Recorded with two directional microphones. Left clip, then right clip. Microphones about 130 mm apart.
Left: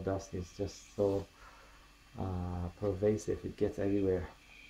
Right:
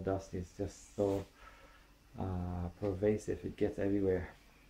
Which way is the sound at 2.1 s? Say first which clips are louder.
Left 1 dB; 15° left (ahead or behind).